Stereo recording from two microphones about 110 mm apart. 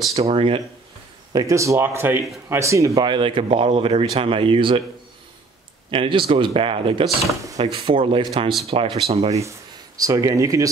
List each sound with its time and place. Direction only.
0.1 s speech: 65° right (ahead or behind)
1.3 s speech: 30° right (ahead or behind)
3.0 s speech: 45° right (ahead or behind)
5.9 s speech: 50° right (ahead or behind)
7.5 s speech: 80° right
7.8 s speech: 50° right (ahead or behind)
9.3 s speech: 30° right (ahead or behind)